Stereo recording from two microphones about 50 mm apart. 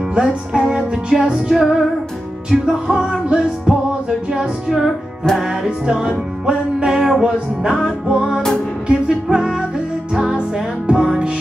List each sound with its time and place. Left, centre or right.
0.1 s music: centre
4.8 s music: centre
5.9 s music: centre